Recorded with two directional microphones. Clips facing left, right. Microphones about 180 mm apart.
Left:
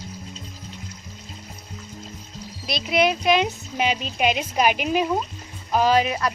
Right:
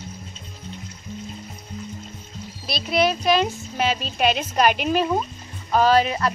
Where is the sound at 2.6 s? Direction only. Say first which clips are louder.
Even; 20° left (ahead or behind).